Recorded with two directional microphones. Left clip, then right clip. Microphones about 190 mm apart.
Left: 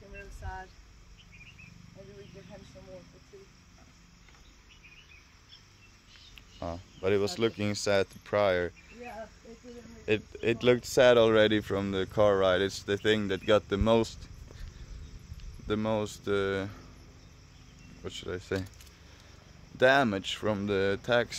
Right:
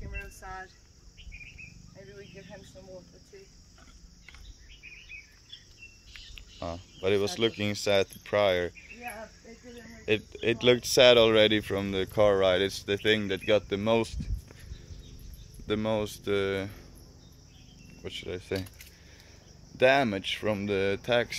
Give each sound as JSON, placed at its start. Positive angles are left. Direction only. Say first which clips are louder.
{"t": 0.4, "sound": "vehicle", "louder": "left 2 dB", "side_deg": 20}
{"t": 6.3, "sound": "speech", "louder": "right 1 dB", "side_deg": 0}
{"t": 10.0, "sound": "speech", "louder": "right 1 dB", "side_deg": 5}
{"t": 15.6, "sound": "speech", "louder": "right 1 dB", "side_deg": 0}
{"t": 18.0, "sound": "speech", "louder": "right 1 dB", "side_deg": 10}
{"t": 19.8, "sound": "speech", "louder": "right 1 dB", "side_deg": 5}